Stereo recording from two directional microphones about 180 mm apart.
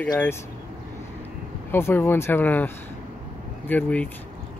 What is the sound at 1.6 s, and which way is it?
Speech, 10° left (ahead or behind).